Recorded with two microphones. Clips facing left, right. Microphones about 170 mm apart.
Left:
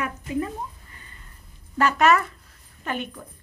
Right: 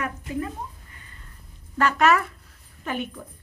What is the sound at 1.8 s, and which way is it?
A woman's voice, centre (ahead or behind).